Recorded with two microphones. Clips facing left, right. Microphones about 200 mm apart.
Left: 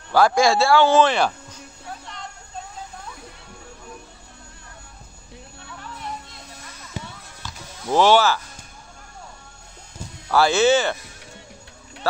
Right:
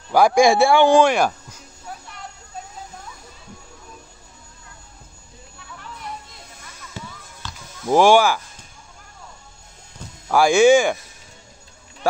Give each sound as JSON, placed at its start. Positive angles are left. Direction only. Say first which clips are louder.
{"t": 0.1, "sound": "speech", "louder": "right 3 dB", "side_deg": -15}
{"t": 7.0, "sound": "basketball bounce", "louder": "left 2 dB", "side_deg": 15}
{"t": 7.9, "sound": "speech", "louder": "right 2 dB", "side_deg": -10}
{"t": 10.2, "sound": "speech", "louder": "right 4 dB", "side_deg": -15}